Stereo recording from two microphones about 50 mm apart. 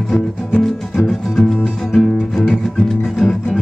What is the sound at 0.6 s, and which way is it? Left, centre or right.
Music, centre.